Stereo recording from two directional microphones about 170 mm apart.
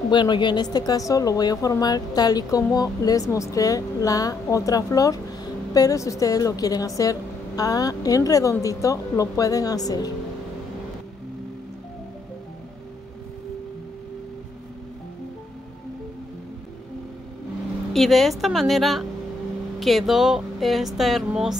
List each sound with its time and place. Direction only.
0.1 s a woman's voice: 25° left (ahead or behind)
17.9 s speech: centre (ahead or behind)